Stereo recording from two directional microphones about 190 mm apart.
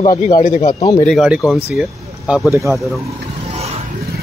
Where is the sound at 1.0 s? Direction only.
Centre (ahead or behind).